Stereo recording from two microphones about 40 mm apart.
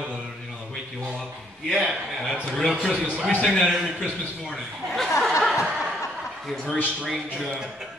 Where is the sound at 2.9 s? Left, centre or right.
Right.